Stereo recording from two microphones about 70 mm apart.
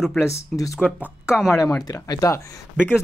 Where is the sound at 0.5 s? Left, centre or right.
Centre.